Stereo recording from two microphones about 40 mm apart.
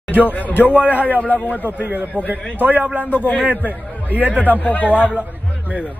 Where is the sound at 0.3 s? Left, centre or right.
Left.